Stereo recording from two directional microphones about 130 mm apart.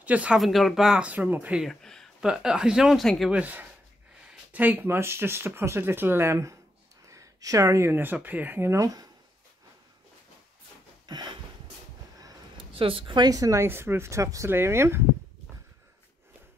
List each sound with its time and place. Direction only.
0.0 s speech: 10° right (ahead or behind)
1.7 s speech: 5° left (ahead or behind)
3.3 s speech: 10° right (ahead or behind)
11.1 s a sound: 35° right (ahead or behind)
12.5 s speech: 45° right (ahead or behind); by 15.0 s 20° right (ahead or behind)